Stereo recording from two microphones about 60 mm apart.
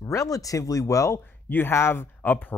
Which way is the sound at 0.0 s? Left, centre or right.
Left.